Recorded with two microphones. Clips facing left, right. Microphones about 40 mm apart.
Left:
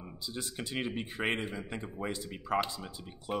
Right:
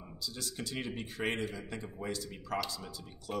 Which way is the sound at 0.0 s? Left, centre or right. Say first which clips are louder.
Left 2 dB; left.